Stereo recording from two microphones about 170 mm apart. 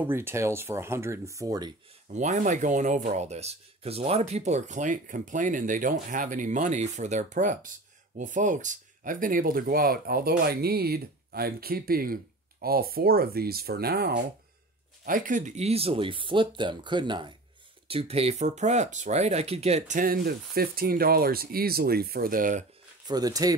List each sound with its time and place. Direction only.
0.0 s speech: 15° right (ahead or behind)
2.0 s speech: 45° right (ahead or behind); by 14.2 s 65° right (ahead or behind)
15.0 s speech: 50° right (ahead or behind)
23.0 s speech: 20° right (ahead or behind)